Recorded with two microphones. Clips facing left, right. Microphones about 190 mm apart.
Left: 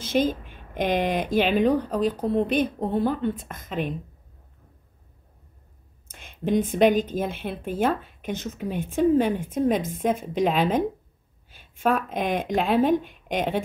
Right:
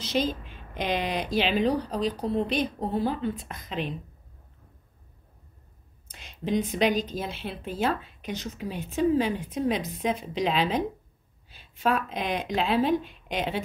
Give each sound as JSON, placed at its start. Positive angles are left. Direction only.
{"t": 0.0, "sound": "a woman's voice", "side_deg": 50}
{"t": 6.1, "sound": "a woman's voice", "side_deg": 50}